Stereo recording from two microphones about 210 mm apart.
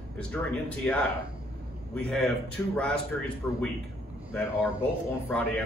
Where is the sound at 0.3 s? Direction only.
5° left (ahead or behind).